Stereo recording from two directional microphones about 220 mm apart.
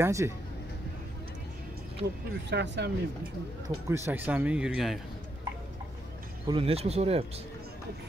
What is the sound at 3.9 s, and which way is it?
Speech, 10° right (ahead or behind).